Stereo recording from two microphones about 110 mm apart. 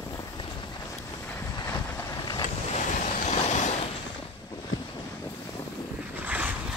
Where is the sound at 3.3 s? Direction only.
90° left.